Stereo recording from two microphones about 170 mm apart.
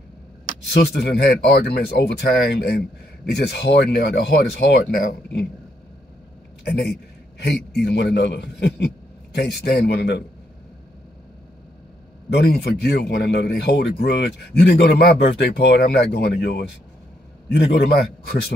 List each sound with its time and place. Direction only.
0.7 s speech: 75° left (ahead or behind)
6.6 s a sound: 70° left (ahead or behind)
7.7 s a man's voice: 80° left
12.4 s speech: 70° left (ahead or behind)